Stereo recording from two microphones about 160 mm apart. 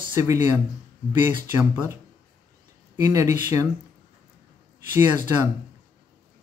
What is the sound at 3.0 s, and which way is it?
Speech, 20° right (ahead or behind).